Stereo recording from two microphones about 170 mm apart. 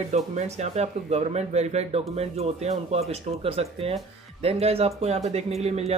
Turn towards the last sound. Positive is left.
turn(degrees=-40)  # may be behind; listen again after turning